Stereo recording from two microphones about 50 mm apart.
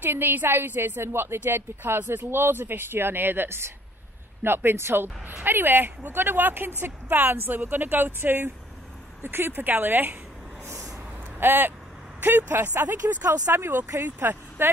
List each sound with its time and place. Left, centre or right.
0.0 s a woman's voice: right
11.3 s vehicle: right
12.2 s a woman's voice: right
13.3 s a woman's voice: right